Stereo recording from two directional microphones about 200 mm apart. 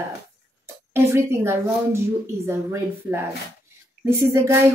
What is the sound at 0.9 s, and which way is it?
A woman's voice, 15° right (ahead or behind).